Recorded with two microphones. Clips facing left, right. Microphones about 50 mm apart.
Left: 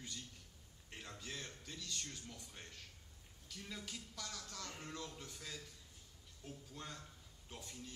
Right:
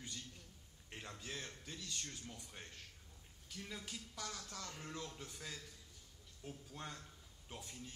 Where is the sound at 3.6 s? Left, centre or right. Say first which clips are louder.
Even; right.